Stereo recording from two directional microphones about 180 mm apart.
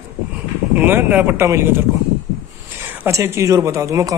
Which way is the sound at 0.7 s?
10° right (ahead or behind).